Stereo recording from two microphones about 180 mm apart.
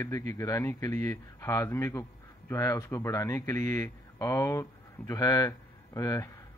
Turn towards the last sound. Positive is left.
turn(degrees=20)  # may be behind; listen again after turning